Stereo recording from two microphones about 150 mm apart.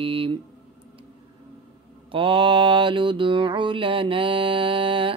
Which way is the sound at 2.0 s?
35° right (ahead or behind).